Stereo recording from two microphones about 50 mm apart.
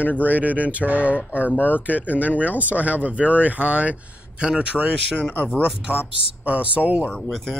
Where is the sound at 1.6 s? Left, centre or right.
Left.